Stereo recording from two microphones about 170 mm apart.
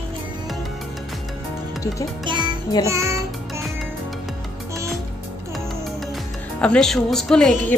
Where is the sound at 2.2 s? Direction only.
30° right (ahead or behind).